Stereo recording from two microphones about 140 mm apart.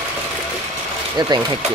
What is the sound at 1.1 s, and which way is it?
Speech, 30° right (ahead or behind).